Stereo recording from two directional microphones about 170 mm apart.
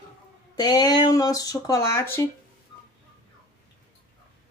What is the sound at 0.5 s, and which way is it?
Speech, 25° left (ahead or behind).